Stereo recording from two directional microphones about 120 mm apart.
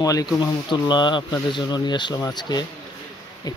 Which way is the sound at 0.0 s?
30° left (ahead or behind).